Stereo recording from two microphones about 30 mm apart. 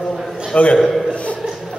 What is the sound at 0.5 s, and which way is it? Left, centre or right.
Speech, left.